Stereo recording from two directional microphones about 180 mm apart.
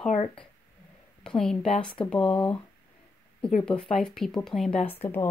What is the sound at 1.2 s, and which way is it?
Speech, 5° left (ahead or behind).